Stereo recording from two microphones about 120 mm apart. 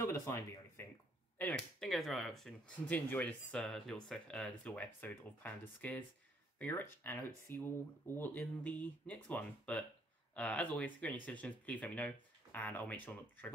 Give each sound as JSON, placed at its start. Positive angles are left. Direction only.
{"t": 0.0, "sound": "speech", "side_deg": 25}
{"t": 1.4, "sound": "speech", "side_deg": 5}
{"t": 2.9, "sound": "speech", "side_deg": 15}